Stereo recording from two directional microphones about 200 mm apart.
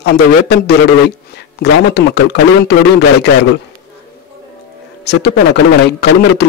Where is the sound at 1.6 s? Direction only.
55° left (ahead or behind).